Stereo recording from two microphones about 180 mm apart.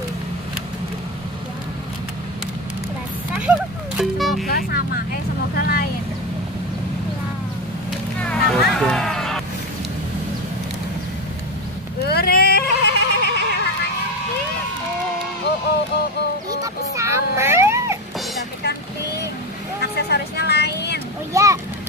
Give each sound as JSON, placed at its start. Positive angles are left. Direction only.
{"t": 3.3, "sound": "music", "side_deg": -5}
{"t": 4.5, "sound": "speech", "side_deg": 55}
{"t": 8.2, "sound": "vehicle", "side_deg": 0}
{"t": 12.0, "sound": "a sound", "side_deg": 60}
{"t": 16.4, "sound": "cat", "side_deg": -20}
{"t": 20.0, "sound": "vehicle", "side_deg": 65}
{"t": 21.3, "sound": "vehicle", "side_deg": -15}